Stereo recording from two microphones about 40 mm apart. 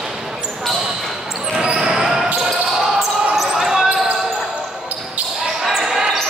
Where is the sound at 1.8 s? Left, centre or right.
Centre.